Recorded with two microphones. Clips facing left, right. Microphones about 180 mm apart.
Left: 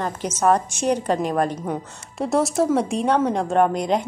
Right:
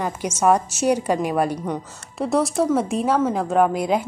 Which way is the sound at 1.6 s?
5° left (ahead or behind).